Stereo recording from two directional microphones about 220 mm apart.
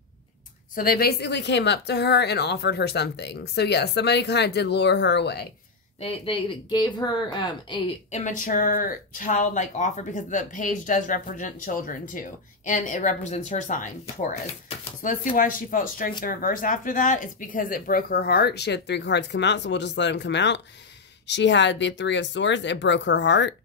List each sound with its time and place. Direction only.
0.7 s a woman's voice: 45° left (ahead or behind)
5.9 s speech: 25° left (ahead or behind)
8.2 s speech: 35° left (ahead or behind); by 23.5 s 55° left (ahead or behind)